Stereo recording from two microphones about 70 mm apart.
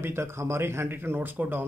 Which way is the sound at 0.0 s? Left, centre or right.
Right.